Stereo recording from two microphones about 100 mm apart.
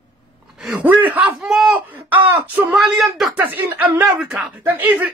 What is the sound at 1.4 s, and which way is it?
Speech, 5° right (ahead or behind).